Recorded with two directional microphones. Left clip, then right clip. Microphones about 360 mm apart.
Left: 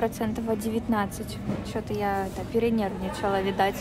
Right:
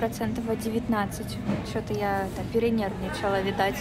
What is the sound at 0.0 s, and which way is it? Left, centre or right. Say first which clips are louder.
A woman's voice: left 1 dB; centre.